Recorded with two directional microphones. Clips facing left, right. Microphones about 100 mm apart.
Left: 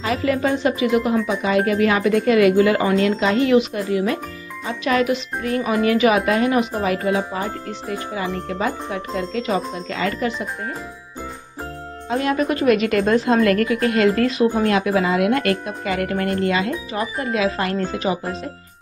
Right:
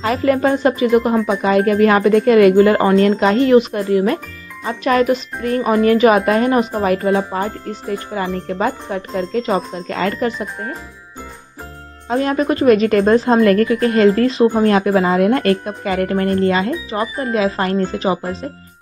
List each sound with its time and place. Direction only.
0.0 s a woman's voice: 45° right (ahead or behind)
12.1 s a woman's voice: 35° right (ahead or behind)